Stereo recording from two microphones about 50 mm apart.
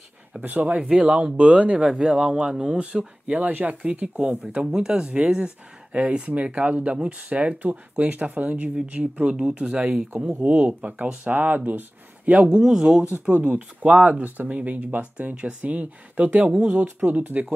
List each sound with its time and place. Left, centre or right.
0.4 s speech: right
0.7 s speech: right
3.3 s speech: right
12.3 s speech: centre
13.3 s speech: right